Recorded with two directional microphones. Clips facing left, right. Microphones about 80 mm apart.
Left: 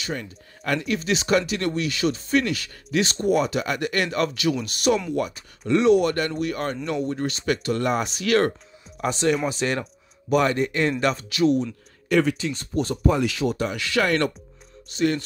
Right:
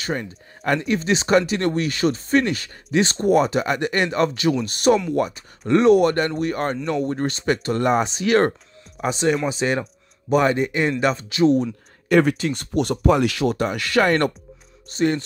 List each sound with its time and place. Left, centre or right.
0.0 s speech: right
9.0 s speech: centre; by 12.6 s right
12.7 s speech: right
13.7 s speech: right